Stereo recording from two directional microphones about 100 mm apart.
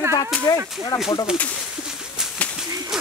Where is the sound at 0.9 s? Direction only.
45° left (ahead or behind).